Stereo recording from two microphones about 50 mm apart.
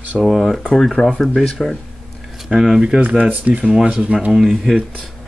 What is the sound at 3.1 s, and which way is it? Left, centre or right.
Speech, right.